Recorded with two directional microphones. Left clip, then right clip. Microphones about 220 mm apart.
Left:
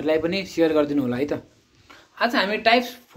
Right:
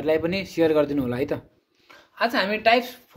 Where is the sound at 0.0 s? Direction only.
30° right (ahead or behind).